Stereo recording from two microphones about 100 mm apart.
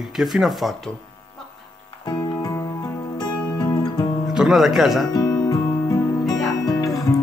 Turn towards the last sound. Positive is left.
turn(degrees=40)  # may be behind; listen again after turning